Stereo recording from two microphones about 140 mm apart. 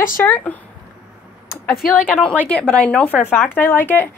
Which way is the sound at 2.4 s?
10° left (ahead or behind).